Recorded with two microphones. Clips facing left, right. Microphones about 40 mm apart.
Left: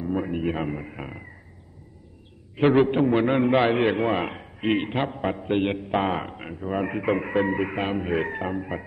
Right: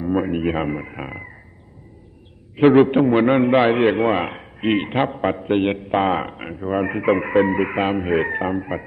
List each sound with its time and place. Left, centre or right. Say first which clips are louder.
0.0 s a man's voice: right 6 dB; right
2.5 s a man's voice: right 6 dB; centre